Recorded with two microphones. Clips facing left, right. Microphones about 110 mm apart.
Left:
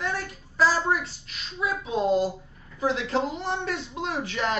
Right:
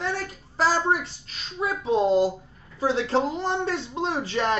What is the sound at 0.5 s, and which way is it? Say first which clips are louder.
A woman's voice: right 1 dB; 30° right (ahead or behind).